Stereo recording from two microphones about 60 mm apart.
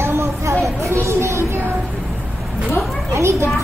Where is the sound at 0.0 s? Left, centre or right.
Right.